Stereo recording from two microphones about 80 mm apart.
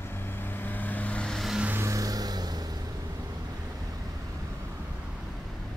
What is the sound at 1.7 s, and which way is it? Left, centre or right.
Vehicle, right.